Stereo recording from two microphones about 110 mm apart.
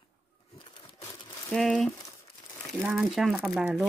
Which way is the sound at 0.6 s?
50° left (ahead or behind).